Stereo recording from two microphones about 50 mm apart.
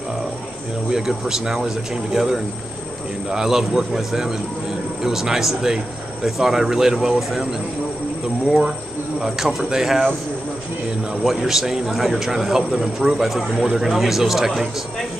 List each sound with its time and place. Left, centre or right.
0.8 s speech: centre
8.5 s speech: centre
11.2 s speech: centre